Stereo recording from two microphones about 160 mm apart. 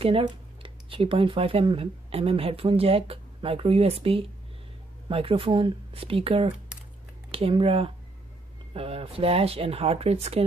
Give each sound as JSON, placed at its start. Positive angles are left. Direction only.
{"t": 0.0, "sound": "speech", "side_deg": -35}